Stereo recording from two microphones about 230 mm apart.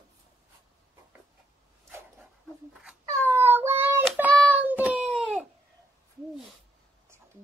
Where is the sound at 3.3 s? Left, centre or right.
Centre.